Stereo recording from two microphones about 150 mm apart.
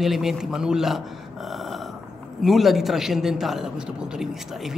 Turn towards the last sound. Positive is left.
turn(degrees=-5)  # may be behind; listen again after turning